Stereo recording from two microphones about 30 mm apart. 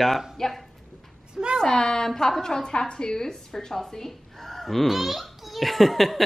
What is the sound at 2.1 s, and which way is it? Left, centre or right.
Speech, centre.